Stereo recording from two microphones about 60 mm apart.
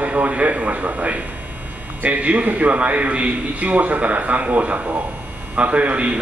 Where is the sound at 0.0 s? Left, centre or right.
Right.